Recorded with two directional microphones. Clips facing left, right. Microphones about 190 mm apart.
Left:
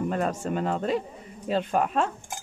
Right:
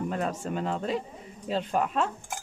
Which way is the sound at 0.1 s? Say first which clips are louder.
Left 3 dB; 50° left (ahead or behind).